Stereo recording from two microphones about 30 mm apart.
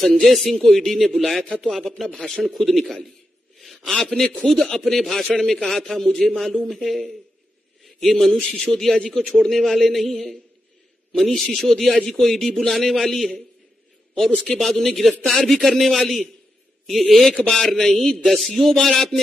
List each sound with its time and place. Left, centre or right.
0.2 s speech: centre
3.5 s a sound: centre
4.1 s speech: centre
4.4 s a man's voice: centre
11.7 s speech: centre